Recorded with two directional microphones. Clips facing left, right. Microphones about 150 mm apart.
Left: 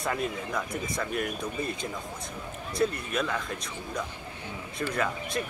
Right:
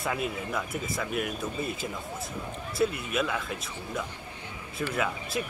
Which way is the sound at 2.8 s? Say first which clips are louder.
Even; 5° right (ahead or behind).